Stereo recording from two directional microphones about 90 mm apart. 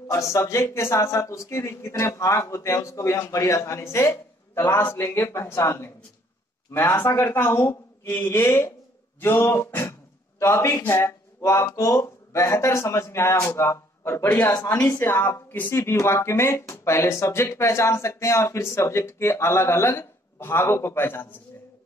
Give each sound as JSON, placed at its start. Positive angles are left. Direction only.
{"t": 0.0, "sound": "speech", "side_deg": 35}
{"t": 7.0, "sound": "speech", "side_deg": 25}
{"t": 14.5, "sound": "a woman's voice", "side_deg": 45}
{"t": 14.9, "sound": "speech", "side_deg": 25}